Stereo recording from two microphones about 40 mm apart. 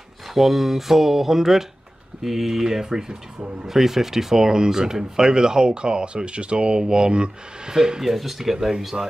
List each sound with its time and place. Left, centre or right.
0.3 s speech: centre
8.0 s speech: centre